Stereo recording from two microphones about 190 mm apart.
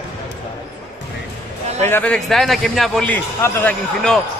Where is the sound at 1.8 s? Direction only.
10° left (ahead or behind).